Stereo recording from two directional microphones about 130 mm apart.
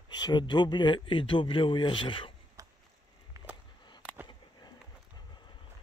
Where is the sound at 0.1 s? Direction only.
35° left (ahead or behind).